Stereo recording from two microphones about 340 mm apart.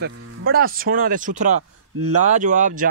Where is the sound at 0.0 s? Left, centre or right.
Right.